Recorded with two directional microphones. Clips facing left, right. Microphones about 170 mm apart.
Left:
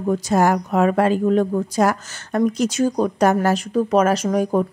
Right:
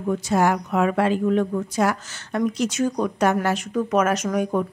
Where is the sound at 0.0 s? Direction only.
40° left (ahead or behind).